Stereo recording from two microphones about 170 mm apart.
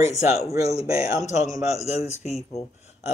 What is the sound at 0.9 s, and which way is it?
Speech, 20° right (ahead or behind).